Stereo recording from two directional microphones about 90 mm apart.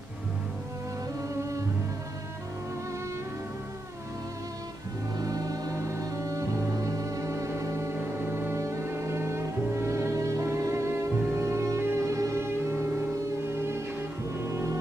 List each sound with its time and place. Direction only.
1.3 s music: 35° right (ahead or behind)
5.1 s music: 40° right (ahead or behind)